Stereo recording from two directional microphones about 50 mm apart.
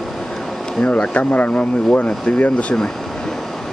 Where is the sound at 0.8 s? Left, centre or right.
Left.